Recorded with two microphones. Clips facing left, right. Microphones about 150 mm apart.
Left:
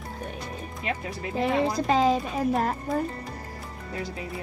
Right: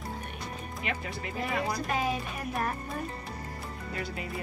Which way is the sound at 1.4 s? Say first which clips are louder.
Left 8 dB; 75° left (ahead or behind).